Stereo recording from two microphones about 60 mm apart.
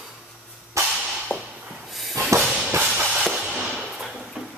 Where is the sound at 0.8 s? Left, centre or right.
Right.